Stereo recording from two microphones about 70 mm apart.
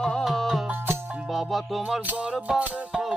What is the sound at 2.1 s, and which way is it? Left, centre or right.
Music, centre.